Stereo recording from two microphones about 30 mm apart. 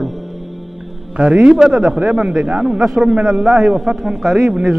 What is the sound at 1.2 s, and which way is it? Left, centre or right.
Speech, right.